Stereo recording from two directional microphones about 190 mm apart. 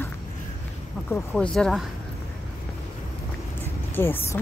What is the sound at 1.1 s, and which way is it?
Speech, 5° left (ahead or behind).